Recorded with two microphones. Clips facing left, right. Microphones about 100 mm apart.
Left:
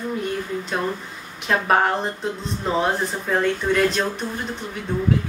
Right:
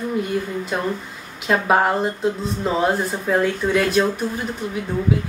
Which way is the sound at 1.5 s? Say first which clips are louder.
Right 2 dB; 5° right (ahead or behind).